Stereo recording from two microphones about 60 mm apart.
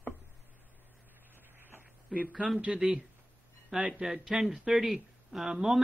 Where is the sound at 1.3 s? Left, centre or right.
Right.